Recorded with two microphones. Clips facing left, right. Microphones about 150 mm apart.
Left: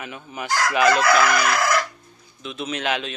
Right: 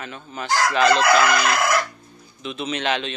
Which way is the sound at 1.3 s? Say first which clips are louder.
Right 1 dB; 20° right (ahead or behind).